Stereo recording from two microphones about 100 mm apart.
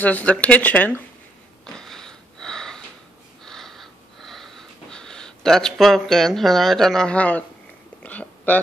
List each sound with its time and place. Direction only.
0.0 s speech: 15° left (ahead or behind)
1.8 s sniff: 5° left (ahead or behind)
3.4 s a sound: 5° left (ahead or behind)